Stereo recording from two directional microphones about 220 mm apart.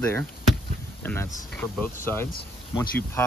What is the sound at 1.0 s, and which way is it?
Speech, 10° left (ahead or behind).